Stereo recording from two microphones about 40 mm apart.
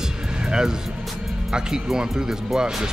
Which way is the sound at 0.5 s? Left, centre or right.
Centre.